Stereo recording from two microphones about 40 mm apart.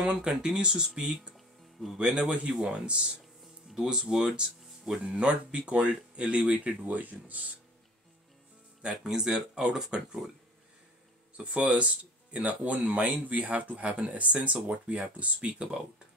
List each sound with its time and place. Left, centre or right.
0.2 s speech: centre
1.3 s music: centre
2.0 s speech: right
3.6 s music: centre
3.9 s speech: centre
5.7 s speech: right
8.8 s speech: centre
11.3 s speech: right